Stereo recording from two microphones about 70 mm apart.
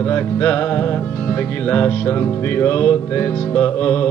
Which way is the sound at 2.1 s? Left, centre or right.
Left.